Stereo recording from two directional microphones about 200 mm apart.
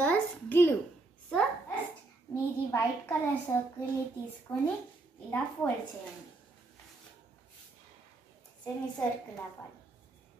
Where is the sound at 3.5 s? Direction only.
15° left (ahead or behind).